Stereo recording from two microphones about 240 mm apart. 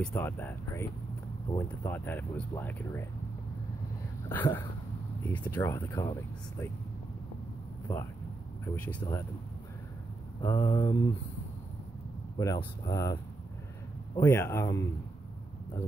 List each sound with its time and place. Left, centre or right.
0.0 s speech: centre
4.3 s speech: centre
7.9 s speech: centre
10.4 s speech: centre
12.4 s speech: centre